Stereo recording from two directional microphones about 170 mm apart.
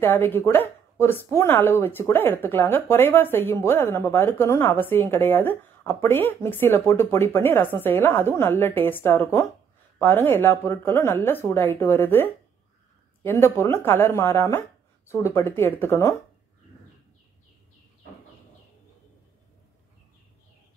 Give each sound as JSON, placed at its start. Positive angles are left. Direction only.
{"t": 0.0, "sound": "speech", "side_deg": 10}